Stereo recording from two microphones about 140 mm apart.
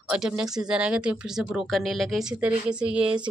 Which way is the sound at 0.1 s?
5° right (ahead or behind).